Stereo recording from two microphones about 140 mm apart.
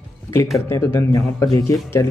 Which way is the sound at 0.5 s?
20° left (ahead or behind).